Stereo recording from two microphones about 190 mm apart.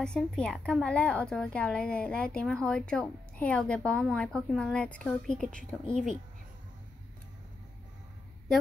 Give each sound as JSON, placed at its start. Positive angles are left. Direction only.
{"t": 0.0, "sound": "a woman's voice", "side_deg": 5}